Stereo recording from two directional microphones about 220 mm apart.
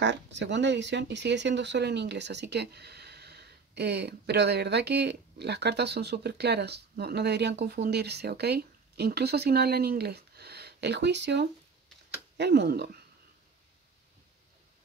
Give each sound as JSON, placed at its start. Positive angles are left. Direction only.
{"t": 0.0, "sound": "speech", "side_deg": -55}